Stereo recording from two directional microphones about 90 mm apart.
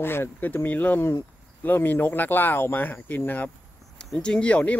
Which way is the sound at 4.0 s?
10° left (ahead or behind).